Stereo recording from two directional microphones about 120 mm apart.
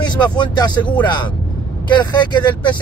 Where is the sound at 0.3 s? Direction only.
40° left (ahead or behind).